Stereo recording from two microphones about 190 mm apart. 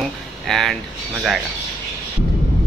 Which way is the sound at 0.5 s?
Centre (ahead or behind).